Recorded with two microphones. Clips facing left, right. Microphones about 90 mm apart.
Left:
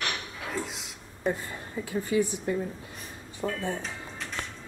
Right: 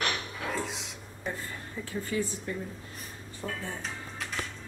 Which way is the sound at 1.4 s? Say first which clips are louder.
Left 3 dB; 15° left (ahead or behind).